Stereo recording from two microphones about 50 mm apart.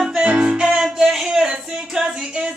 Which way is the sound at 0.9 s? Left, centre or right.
Centre.